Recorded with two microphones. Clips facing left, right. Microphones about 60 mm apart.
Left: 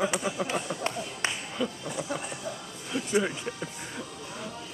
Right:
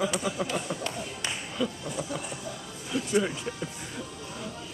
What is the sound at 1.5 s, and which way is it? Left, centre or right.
Speech, centre.